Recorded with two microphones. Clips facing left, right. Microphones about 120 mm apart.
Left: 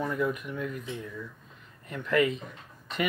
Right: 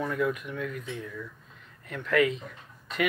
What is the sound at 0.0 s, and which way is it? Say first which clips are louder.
Speech: right 1 dB; centre (ahead or behind).